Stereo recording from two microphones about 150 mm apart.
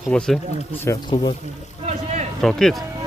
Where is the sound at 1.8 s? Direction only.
50° right (ahead or behind).